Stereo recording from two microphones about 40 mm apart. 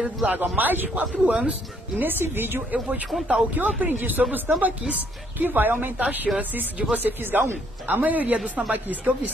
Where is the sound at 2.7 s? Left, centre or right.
Right.